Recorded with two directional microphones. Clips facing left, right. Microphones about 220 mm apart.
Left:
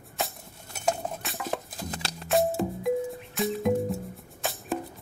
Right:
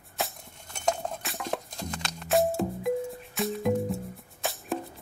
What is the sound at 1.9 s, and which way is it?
Music, 35° left (ahead or behind).